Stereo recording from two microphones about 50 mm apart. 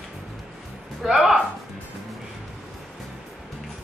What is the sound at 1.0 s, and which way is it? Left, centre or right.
Music, centre.